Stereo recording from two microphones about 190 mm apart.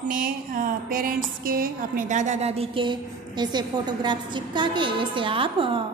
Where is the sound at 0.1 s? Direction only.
45° right (ahead or behind).